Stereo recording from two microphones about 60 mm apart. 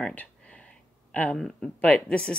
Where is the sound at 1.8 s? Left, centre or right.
Centre.